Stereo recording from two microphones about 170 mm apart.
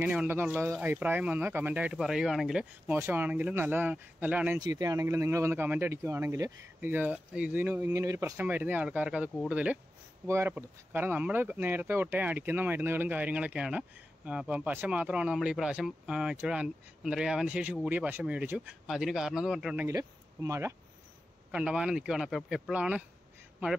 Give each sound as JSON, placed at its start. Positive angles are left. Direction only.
{"t": 0.0, "sound": "speech", "side_deg": -5}
{"t": 4.6, "sound": "speech", "side_deg": -20}
{"t": 21.5, "sound": "speech", "side_deg": -5}